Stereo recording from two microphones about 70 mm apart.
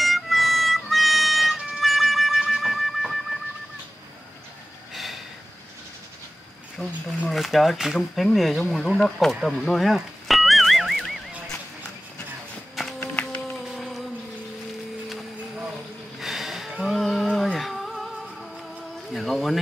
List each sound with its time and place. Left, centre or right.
0.0 s music: centre
6.8 s speech: centre
9.7 s a sound: centre
13.0 s music: left
13.7 s music: centre
16.2 s a sound: centre